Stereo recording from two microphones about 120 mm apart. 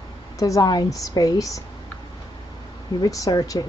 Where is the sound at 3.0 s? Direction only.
30° left (ahead or behind).